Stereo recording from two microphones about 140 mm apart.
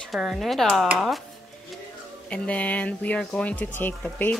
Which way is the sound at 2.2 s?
10° left (ahead or behind).